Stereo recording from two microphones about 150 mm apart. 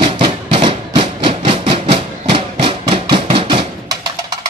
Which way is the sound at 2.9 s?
35° right (ahead or behind).